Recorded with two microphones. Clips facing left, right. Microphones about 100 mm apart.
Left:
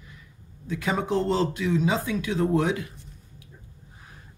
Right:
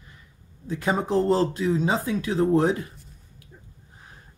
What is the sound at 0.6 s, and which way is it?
Speech, 35° right (ahead or behind).